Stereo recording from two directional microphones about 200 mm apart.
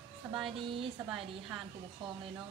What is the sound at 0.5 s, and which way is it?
Speech, 25° right (ahead or behind).